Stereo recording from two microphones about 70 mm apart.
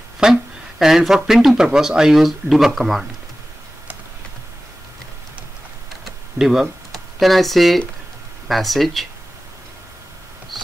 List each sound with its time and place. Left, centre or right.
0.2 s speech: centre
6.0 s computer keyboard: centre
8.5 s speech: centre